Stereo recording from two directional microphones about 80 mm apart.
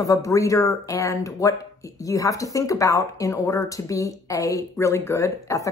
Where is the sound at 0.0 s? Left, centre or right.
Left.